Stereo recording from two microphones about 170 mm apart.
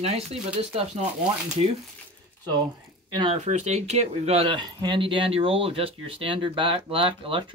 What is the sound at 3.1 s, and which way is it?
Speech, 30° right (ahead or behind).